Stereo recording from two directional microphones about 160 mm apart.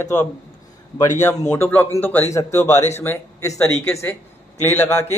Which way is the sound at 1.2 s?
20° left (ahead or behind).